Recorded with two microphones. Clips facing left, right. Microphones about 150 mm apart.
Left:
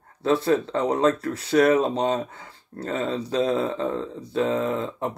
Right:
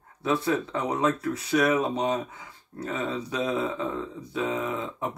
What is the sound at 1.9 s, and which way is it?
Speech, 60° left (ahead or behind).